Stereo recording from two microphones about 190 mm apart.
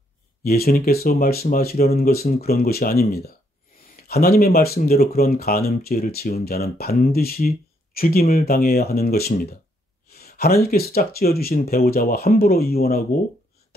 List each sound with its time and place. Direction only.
0.4 s speech: 50° left (ahead or behind)